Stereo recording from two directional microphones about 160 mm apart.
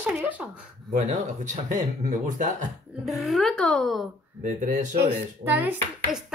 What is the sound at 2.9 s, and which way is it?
A child's voice, centre (ahead or behind).